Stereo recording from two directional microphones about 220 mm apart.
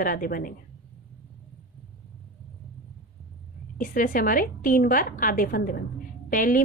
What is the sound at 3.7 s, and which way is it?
A woman's voice, 40° left (ahead or behind).